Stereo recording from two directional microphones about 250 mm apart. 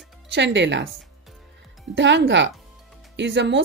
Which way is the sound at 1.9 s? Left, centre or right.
Right.